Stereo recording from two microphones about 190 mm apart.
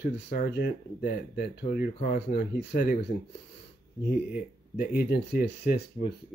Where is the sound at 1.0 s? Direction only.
50° left (ahead or behind).